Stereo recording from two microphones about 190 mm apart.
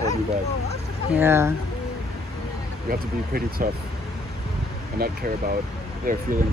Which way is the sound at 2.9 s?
50° right (ahead or behind).